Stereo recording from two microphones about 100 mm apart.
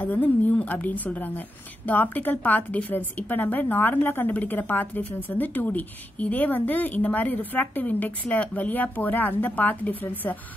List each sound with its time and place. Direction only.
0.0 s a woman's voice: 15° left (ahead or behind)